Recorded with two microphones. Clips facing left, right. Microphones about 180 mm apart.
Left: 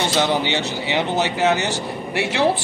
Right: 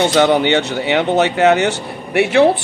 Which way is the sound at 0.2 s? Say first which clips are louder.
Right 7 dB; 60° right (ahead or behind).